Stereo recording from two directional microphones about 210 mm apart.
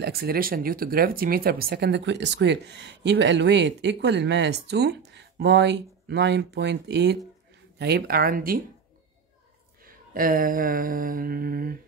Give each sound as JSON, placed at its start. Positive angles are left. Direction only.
{"t": 0.0, "sound": "speech", "side_deg": -45}
{"t": 9.8, "sound": "speech", "side_deg": -45}